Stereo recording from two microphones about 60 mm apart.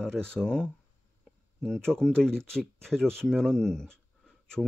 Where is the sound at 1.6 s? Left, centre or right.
Centre.